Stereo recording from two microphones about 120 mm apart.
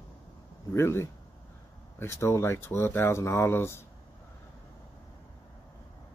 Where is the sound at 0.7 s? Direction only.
20° left (ahead or behind).